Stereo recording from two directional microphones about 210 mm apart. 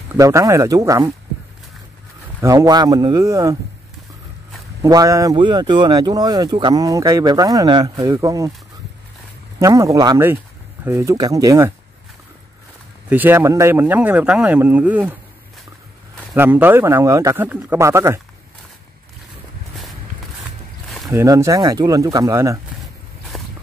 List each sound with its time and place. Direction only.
0.1 s speech: 15° right (ahead or behind)
2.4 s speech: 15° right (ahead or behind)
4.8 s speech: 15° right (ahead or behind)
9.6 s speech: 15° right (ahead or behind)
13.1 s speech: 10° right (ahead or behind)
16.3 s speech: 10° right (ahead or behind)
21.1 s speech: 15° right (ahead or behind)
23.3 s walk: centre (ahead or behind)